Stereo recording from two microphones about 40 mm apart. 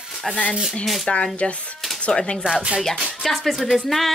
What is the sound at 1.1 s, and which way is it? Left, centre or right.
Speech, left.